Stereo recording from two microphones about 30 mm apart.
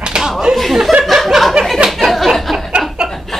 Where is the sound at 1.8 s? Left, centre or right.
Right.